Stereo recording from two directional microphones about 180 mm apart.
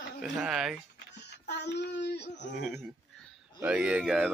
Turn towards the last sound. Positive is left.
turn(degrees=-5)  # may be behind; listen again after turning